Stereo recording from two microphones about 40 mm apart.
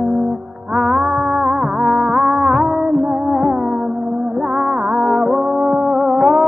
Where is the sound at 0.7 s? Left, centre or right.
Centre.